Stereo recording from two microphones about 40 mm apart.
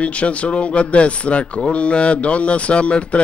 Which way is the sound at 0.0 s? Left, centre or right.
Left.